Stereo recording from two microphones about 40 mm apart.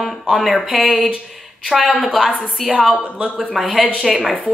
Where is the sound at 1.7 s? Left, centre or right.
Centre.